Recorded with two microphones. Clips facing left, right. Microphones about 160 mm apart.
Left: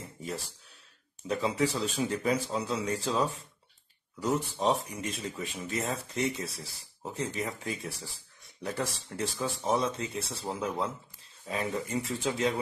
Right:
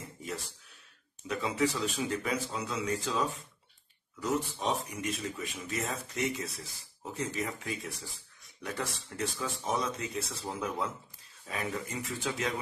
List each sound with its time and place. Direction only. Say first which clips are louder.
0.2 s a sound: left 2 dB; 30° left (ahead or behind)
1.2 s speech: left 2 dB; 30° left (ahead or behind)
4.6 s speech: left 4 dB; 30° left (ahead or behind)